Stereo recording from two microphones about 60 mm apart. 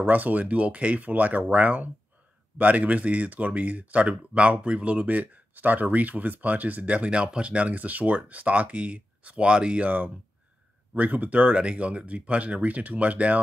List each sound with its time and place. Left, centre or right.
0.0 s speech: right